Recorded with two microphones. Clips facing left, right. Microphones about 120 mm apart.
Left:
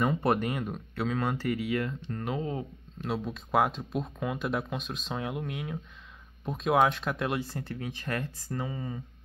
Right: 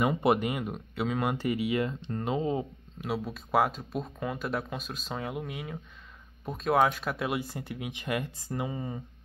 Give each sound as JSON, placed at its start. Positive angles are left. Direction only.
{"t": 0.0, "sound": "speech", "side_deg": -10}
{"t": 1.3, "sound": "speech", "side_deg": -20}
{"t": 3.0, "sound": "speech", "side_deg": -5}